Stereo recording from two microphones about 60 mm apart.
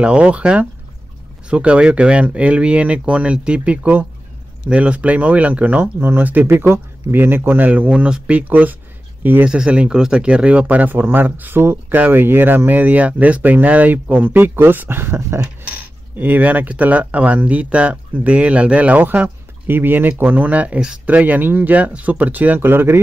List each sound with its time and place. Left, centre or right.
0.0 s speech: centre
5.9 s speech: right
7.9 s speech: centre
9.5 s speech: centre; by 15.4 s right
16.2 s speech: right